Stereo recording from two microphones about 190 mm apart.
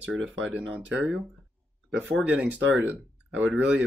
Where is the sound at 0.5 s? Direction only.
10° right (ahead or behind).